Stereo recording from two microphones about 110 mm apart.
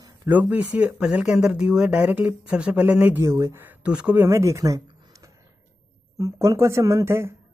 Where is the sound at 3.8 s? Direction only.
10° right (ahead or behind).